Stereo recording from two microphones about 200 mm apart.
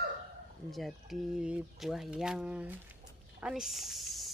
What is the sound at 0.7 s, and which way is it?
Speech, centre (ahead or behind).